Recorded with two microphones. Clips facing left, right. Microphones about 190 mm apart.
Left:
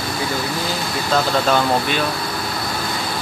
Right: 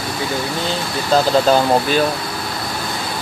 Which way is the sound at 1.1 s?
35° right (ahead or behind).